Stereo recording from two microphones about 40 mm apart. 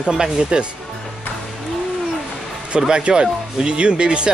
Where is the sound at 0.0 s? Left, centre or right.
Centre.